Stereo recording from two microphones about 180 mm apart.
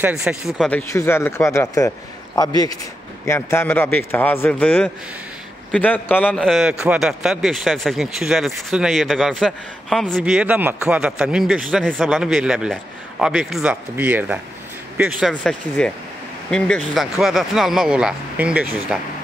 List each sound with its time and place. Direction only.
0.0 s a man's voice: 5° right (ahead or behind)